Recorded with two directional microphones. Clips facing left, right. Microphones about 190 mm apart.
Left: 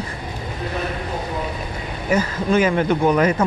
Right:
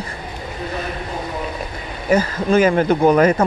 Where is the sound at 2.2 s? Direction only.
40° right (ahead or behind).